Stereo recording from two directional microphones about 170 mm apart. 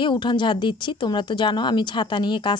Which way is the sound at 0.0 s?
25° left (ahead or behind).